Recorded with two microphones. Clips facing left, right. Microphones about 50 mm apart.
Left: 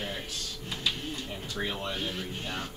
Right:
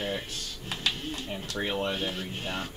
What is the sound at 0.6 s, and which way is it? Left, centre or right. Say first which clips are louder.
Speech: right 1 dB; right.